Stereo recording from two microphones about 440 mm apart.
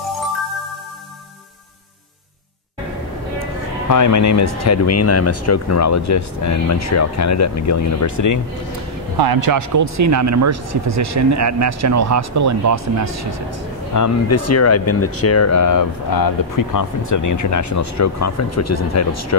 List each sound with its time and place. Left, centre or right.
3.9 s speech: left
9.2 s speech: right
13.9 s speech: left